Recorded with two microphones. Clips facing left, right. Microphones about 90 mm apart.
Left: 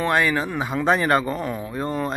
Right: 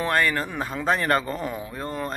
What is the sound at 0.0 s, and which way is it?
Speech, 5° left (ahead or behind).